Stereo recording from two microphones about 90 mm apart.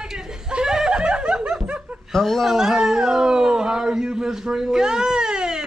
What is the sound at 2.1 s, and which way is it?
Speech, centre (ahead or behind).